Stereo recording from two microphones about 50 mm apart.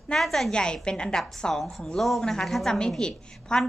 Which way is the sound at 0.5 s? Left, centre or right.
Centre.